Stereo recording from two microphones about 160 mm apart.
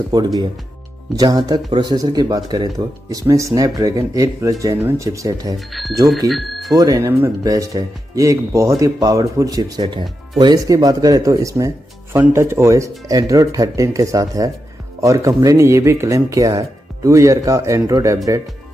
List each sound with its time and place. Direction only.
0.1 s speech: 25° right (ahead or behind)
5.7 s speech: centre (ahead or behind)
6.7 s speech: 20° right (ahead or behind)